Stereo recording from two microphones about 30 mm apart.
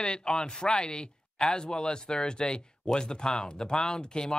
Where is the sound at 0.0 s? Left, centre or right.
Left.